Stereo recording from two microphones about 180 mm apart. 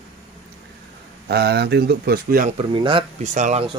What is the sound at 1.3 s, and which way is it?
Speech, 65° right (ahead or behind).